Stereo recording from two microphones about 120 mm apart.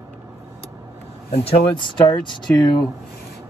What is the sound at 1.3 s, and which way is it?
Speech, 50° left (ahead or behind).